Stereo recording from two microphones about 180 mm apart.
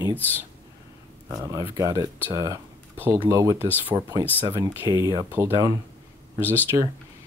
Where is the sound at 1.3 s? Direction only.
20° right (ahead or behind).